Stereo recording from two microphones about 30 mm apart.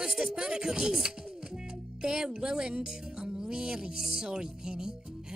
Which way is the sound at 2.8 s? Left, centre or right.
Right.